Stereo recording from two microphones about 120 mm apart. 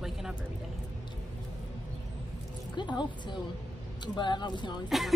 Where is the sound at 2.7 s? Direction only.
40° left (ahead or behind).